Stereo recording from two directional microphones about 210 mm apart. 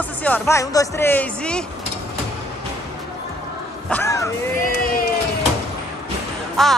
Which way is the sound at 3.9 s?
15° left (ahead or behind).